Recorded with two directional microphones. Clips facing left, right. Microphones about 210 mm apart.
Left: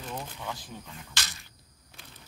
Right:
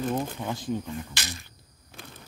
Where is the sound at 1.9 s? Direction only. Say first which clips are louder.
Right 8 dB; 50° right (ahead or behind).